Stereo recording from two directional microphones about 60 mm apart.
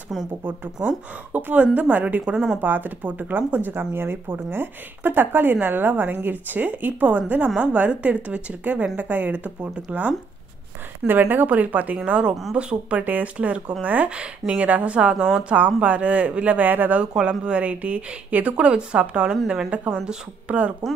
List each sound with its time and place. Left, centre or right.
0.4 s speech: right
2.3 s speech: centre
2.6 s speech: right
17.0 s speech: centre